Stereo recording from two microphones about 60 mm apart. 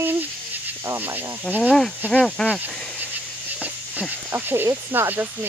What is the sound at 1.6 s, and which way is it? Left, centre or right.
Speech, centre.